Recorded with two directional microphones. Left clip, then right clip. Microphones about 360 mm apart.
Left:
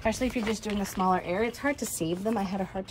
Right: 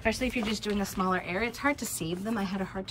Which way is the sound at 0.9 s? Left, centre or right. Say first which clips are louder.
Left 6 dB; centre.